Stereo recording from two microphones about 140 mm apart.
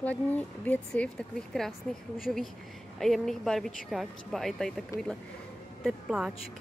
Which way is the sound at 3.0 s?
Centre (ahead or behind).